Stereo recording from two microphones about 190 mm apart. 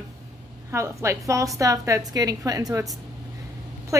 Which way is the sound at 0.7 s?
15° right (ahead or behind).